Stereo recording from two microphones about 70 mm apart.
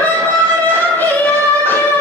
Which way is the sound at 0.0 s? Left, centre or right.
Left.